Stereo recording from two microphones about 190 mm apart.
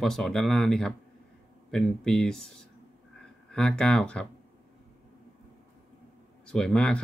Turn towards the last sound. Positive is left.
turn(degrees=5)  # may be behind; listen again after turning